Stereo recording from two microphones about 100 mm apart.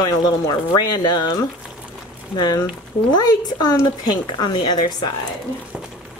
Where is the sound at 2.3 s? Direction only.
45° left (ahead or behind).